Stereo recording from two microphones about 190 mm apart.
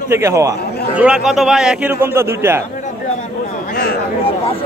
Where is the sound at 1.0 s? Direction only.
5° right (ahead or behind).